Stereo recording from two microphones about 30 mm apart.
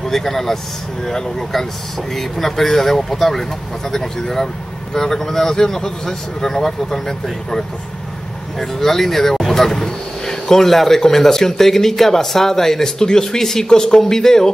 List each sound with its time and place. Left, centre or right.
0.0 s speech: centre
8.5 s speech: centre
13.7 s speech: left